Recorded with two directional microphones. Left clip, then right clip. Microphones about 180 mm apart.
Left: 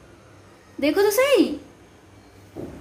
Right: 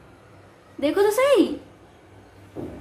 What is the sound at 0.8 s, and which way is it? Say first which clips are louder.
Speech: left 1 dB; 15° left (ahead or behind).